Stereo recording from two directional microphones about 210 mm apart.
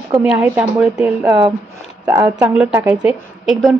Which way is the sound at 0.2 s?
5° right (ahead or behind).